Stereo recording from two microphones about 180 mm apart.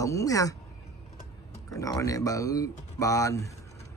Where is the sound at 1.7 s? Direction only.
20° left (ahead or behind).